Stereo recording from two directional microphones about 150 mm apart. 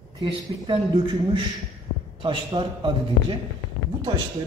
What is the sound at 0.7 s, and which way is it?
A woman's voice, 35° right (ahead or behind).